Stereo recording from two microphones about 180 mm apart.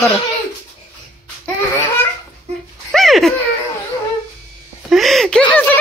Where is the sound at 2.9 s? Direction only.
Centre (ahead or behind).